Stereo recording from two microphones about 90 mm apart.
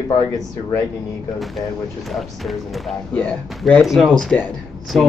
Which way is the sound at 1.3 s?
Centre (ahead or behind).